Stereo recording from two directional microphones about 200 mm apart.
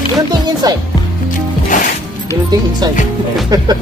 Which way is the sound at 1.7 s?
40° left (ahead or behind).